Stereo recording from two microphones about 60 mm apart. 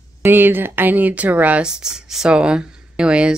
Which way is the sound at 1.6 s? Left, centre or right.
Centre.